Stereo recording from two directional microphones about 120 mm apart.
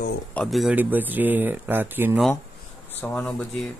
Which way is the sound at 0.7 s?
15° right (ahead or behind).